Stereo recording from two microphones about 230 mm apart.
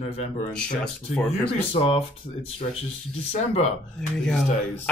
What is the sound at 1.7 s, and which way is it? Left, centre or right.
Speech, left.